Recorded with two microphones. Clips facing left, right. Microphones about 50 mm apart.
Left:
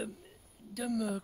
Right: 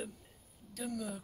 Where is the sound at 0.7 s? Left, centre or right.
Left.